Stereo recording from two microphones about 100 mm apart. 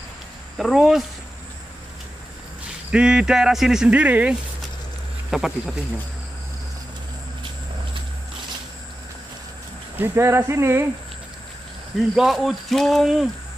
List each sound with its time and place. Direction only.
0.6 s speech: 5° right (ahead or behind)
2.9 s speech: 10° right (ahead or behind)
5.3 s speech: 5° right (ahead or behind)
9.9 s speech: 25° right (ahead or behind)
12.2 s speech: centre (ahead or behind)